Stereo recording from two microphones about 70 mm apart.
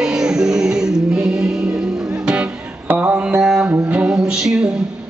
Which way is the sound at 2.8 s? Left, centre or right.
Right.